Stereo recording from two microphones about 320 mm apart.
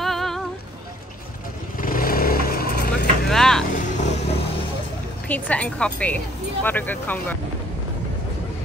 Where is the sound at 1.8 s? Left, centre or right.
Left.